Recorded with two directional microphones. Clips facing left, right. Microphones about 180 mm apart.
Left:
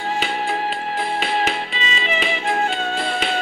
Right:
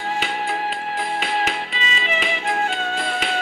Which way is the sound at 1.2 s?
30° left (ahead or behind).